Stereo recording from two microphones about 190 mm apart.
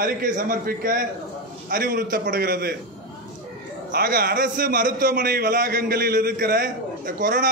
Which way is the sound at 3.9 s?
55° right (ahead or behind).